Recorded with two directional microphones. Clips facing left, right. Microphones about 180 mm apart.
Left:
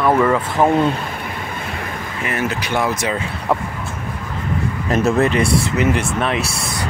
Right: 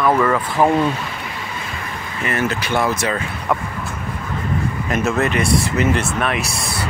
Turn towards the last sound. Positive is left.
turn(degrees=30)  # may be behind; listen again after turning